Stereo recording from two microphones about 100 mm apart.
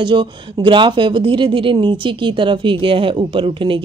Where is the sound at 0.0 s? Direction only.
55° right (ahead or behind).